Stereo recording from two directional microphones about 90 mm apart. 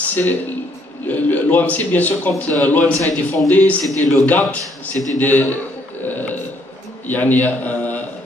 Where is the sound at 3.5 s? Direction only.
20° left (ahead or behind).